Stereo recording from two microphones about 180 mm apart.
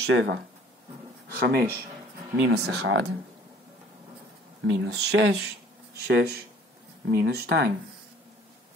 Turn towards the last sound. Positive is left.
turn(degrees=-65)  # may be behind; listen again after turning